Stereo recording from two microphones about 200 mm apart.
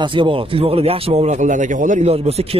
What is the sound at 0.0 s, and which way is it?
Speech, 25° right (ahead or behind).